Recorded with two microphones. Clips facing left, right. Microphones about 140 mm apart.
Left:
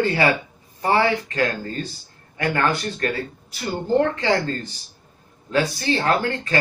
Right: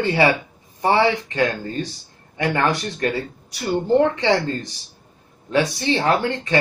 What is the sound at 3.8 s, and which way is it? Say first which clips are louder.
Speech: right 2 dB; 20° right (ahead or behind).